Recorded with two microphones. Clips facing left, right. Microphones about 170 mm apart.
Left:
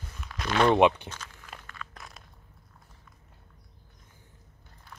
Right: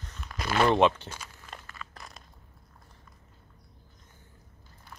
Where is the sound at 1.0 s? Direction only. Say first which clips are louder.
Even; 10° right (ahead or behind).